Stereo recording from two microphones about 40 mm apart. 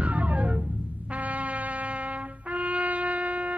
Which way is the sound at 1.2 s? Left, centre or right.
Right.